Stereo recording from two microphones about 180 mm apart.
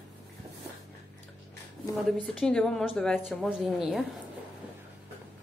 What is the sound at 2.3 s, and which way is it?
Speech, 5° left (ahead or behind).